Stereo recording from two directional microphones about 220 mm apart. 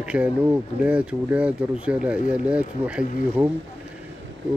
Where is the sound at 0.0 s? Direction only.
5° right (ahead or behind).